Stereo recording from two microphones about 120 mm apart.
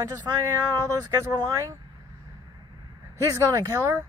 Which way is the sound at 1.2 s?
30° right (ahead or behind).